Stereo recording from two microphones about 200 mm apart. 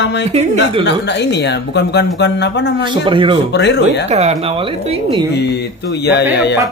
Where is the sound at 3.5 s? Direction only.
60° left (ahead or behind).